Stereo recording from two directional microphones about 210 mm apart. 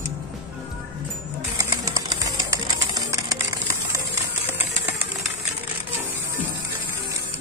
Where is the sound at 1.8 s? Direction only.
15° right (ahead or behind).